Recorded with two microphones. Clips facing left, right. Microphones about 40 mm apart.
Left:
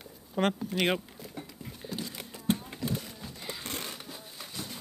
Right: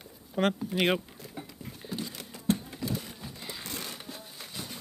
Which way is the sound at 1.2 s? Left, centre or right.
Centre.